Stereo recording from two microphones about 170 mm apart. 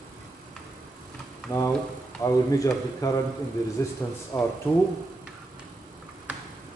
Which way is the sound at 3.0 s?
20° left (ahead or behind).